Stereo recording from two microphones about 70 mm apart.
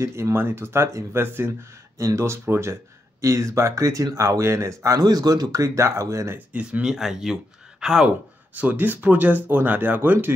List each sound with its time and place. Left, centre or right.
0.0 s speech: right
2.0 s speech: right
5.0 s speech: right
6.3 s speech: centre
6.9 s speech: centre
8.5 s speech: right